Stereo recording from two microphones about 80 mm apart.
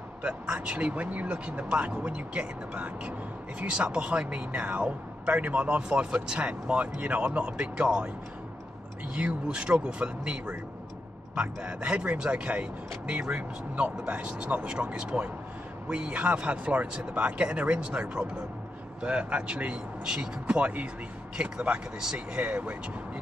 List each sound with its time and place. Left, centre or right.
0.2 s speech: centre
9.1 s speech: centre